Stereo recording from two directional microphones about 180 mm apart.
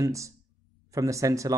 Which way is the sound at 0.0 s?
15° right (ahead or behind).